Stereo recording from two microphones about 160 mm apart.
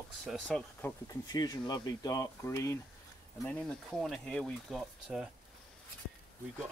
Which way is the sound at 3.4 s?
5° left (ahead or behind).